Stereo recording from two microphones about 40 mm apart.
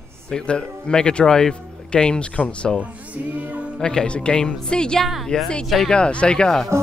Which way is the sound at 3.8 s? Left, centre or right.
Centre.